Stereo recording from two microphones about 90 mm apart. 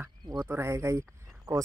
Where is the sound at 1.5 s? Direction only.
45° right (ahead or behind).